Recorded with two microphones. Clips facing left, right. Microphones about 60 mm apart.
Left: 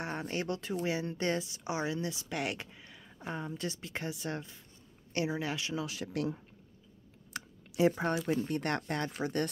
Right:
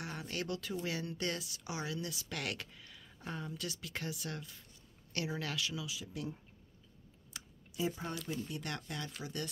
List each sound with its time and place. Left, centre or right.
0.0 s speech: left
5.9 s speech: left
7.3 s a sound: left
8.3 s speech: left